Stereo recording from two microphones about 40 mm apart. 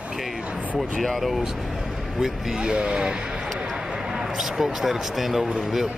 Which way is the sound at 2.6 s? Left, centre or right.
Right.